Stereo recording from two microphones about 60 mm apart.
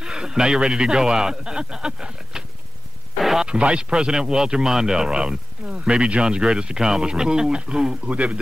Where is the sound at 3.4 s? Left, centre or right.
Centre.